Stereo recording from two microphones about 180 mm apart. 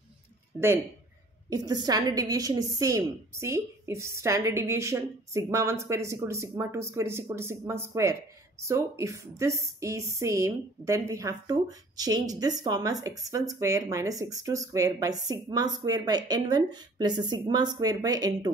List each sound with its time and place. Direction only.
1.5 s a woman's voice: 20° right (ahead or behind)